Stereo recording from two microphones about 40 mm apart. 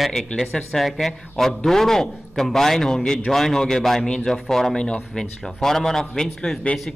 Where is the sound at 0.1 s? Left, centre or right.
Centre.